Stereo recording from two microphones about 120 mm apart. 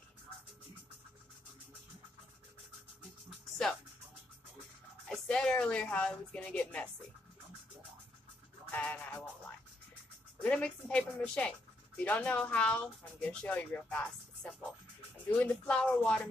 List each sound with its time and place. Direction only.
5.0 s speech: 5° left (ahead or behind)
8.7 s speech: 15° left (ahead or behind)
10.4 s speech: 10° left (ahead or behind)